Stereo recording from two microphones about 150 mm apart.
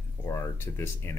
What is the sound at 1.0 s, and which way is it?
Speech, 20° left (ahead or behind).